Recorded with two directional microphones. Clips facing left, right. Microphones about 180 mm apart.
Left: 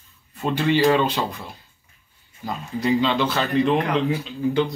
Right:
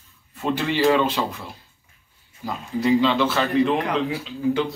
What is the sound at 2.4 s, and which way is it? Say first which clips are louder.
Speech: right 1 dB; centre (ahead or behind).